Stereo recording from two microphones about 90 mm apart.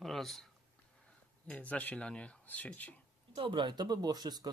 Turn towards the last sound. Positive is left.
turn(degrees=-45)  # may be behind; listen again after turning